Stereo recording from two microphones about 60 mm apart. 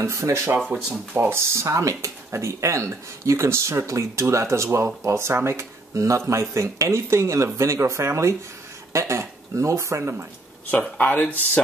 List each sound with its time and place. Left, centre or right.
0.0 s speech: right
11.0 s speech: left